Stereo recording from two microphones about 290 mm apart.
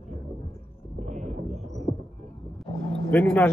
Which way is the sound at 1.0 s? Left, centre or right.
Right.